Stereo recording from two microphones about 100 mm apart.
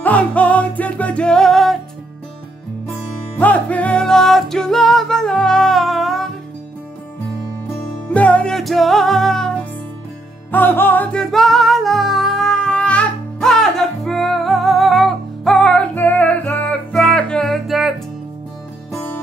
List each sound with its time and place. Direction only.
0.0 s music: 15° left (ahead or behind)
3.3 s music: 15° left (ahead or behind)
8.1 s music: 15° left (ahead or behind)
10.5 s music: 20° left (ahead or behind)
11.1 s music: 5° left (ahead or behind)